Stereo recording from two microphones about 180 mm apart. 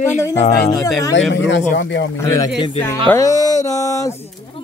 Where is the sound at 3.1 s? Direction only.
20° left (ahead or behind).